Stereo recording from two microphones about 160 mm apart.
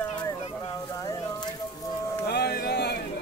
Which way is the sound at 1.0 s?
25° left (ahead or behind).